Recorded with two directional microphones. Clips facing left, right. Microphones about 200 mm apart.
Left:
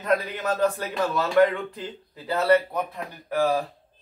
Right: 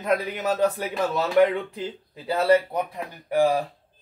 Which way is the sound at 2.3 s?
25° right (ahead or behind).